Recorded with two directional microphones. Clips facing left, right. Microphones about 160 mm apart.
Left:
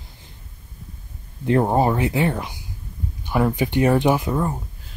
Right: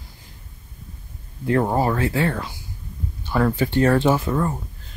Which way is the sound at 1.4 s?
20° left (ahead or behind).